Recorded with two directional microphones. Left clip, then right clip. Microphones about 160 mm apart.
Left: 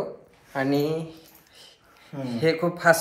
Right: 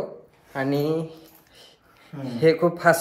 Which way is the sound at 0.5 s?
35° right (ahead or behind).